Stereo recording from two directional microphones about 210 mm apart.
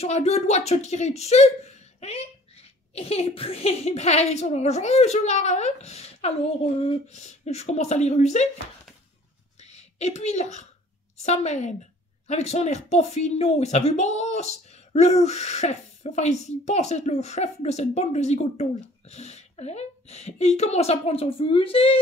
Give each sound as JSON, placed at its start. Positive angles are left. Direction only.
{"t": 0.0, "sound": "speech", "side_deg": 30}
{"t": 9.6, "sound": "a sound", "side_deg": 30}
{"t": 11.2, "sound": "speech", "side_deg": 35}